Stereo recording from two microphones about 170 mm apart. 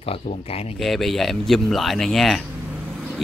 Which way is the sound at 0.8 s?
Centre (ahead or behind).